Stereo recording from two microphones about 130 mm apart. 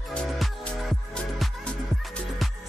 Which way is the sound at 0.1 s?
5° left (ahead or behind).